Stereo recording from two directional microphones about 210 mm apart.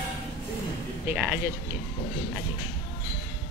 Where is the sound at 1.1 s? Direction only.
10° right (ahead or behind).